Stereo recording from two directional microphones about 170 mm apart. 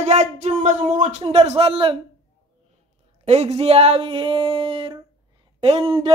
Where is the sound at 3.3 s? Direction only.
40° right (ahead or behind).